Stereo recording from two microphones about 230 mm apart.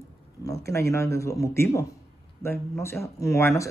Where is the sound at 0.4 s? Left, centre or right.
Centre.